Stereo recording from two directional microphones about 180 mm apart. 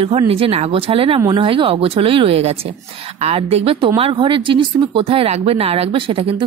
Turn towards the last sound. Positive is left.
turn(degrees=-30)  # may be behind; listen again after turning